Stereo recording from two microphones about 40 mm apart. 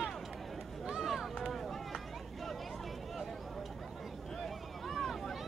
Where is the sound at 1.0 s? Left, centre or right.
Centre.